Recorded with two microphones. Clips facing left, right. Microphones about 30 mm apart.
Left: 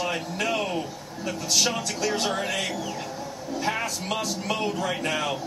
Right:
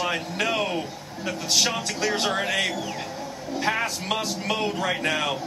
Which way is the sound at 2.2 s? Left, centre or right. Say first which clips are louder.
Right 3 dB; centre.